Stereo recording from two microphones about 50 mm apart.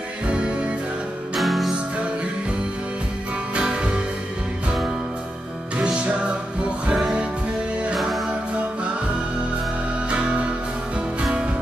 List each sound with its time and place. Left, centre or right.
0.3 s music: centre
1.3 s music: centre
3.5 s music: centre
5.8 s music: right
7.9 s music: centre
10.0 s music: right